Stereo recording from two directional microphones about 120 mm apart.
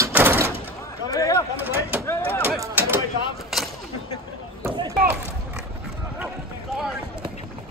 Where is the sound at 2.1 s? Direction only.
20° left (ahead or behind).